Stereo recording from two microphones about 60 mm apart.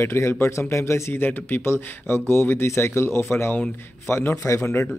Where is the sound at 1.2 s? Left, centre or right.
Left.